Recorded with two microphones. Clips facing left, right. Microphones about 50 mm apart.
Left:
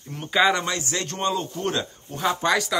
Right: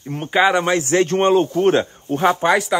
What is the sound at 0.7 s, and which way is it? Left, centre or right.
Speech, right.